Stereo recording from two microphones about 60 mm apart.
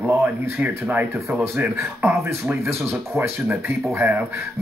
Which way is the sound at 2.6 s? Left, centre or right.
Right.